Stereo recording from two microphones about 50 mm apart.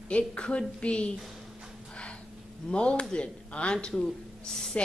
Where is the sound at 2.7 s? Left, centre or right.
Left.